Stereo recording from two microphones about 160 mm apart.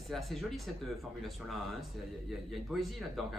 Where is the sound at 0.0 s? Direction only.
Centre (ahead or behind).